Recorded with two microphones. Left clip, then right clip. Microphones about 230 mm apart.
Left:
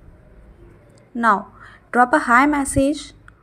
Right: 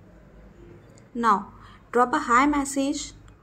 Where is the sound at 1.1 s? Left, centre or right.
Centre.